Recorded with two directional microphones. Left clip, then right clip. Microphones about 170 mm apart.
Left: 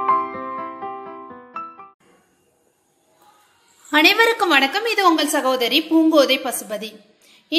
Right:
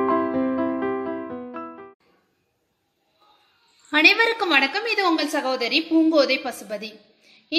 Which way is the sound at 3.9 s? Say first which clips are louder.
Left 2 dB; centre (ahead or behind).